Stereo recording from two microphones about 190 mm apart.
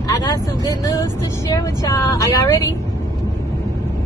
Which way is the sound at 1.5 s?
20° left (ahead or behind).